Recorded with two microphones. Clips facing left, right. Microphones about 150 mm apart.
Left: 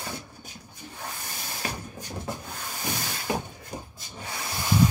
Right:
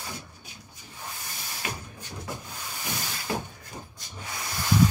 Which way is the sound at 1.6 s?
40° left (ahead or behind).